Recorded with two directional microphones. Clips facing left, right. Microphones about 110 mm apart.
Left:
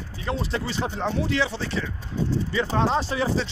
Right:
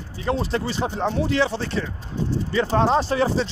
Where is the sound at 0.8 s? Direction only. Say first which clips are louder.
Right 2 dB; 25° right (ahead or behind).